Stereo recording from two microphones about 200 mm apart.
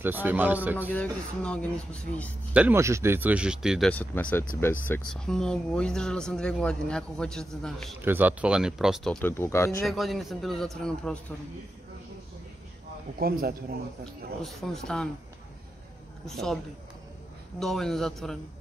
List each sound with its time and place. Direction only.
0.0 s speech: 10° right (ahead or behind)
0.9 s speech: 5° left (ahead or behind)
2.5 s speech: 10° right (ahead or behind)
3.9 s speech: 10° left (ahead or behind)
8.0 s speech: 10° right (ahead or behind)
9.3 s speech: 15° left (ahead or behind)
9.8 s speech: centre (ahead or behind)
13.2 s speech: 45° right (ahead or behind)
14.4 s speech: centre (ahead or behind)
16.3 s speech: centre (ahead or behind)
17.6 s speech: centre (ahead or behind)